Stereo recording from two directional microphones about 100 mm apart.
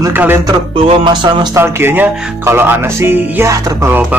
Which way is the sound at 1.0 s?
50° right (ahead or behind).